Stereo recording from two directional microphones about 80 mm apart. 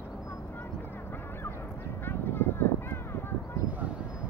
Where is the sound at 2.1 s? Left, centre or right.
Left.